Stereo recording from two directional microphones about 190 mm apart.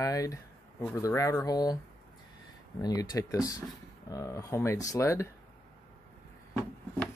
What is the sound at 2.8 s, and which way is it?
Speech, 20° left (ahead or behind).